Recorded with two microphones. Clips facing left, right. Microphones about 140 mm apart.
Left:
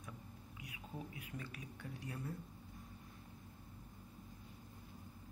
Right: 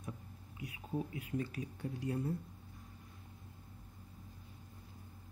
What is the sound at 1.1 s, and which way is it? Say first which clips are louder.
Speech: right 10 dB; 30° right (ahead or behind).